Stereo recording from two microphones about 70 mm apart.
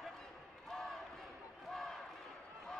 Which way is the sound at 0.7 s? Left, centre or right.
Centre.